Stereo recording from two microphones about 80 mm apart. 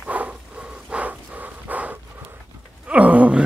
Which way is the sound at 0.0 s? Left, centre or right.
Centre.